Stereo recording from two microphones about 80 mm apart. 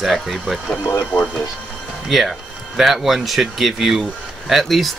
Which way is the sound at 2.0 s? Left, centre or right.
Centre.